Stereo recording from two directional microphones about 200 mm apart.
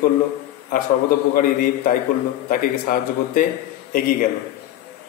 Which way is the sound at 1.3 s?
45° left (ahead or behind).